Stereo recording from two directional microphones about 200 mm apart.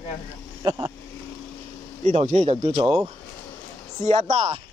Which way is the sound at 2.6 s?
20° right (ahead or behind).